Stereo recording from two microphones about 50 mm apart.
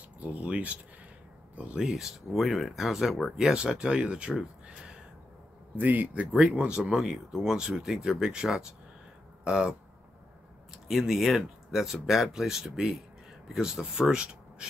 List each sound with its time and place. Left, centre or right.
0.2 s speech: right
1.8 s speech: centre
3.3 s speech: centre
5.8 s speech: right
6.8 s speech: centre